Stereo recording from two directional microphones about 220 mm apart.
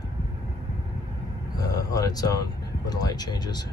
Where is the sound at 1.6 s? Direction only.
15° left (ahead or behind).